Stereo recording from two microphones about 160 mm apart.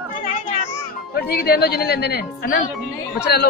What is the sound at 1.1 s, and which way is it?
A man's voice, 85° left.